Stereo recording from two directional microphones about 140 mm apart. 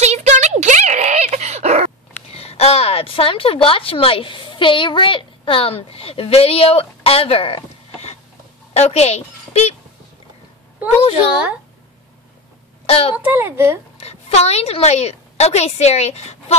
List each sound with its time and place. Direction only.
0.0 s a sound: 55° right (ahead or behind)
2.3 s a woman's voice: 45° left (ahead or behind)
12.8 s a child's voice: 45° left (ahead or behind)
13.2 s a woman's voice: 15° right (ahead or behind)
13.9 s a woman's voice: 50° left (ahead or behind)